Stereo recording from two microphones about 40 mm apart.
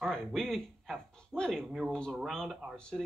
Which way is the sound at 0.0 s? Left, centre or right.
Centre.